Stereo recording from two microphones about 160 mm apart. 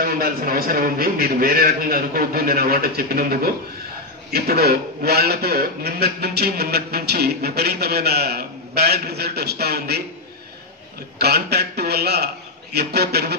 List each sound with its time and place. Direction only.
0.0 s a man's voice: 70° right (ahead or behind)
4.3 s speech: 80° right
11.1 s a man's voice: 90° right